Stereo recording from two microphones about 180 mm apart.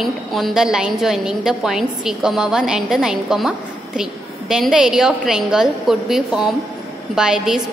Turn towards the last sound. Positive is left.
turn(degrees=-5)  # may be behind; listen again after turning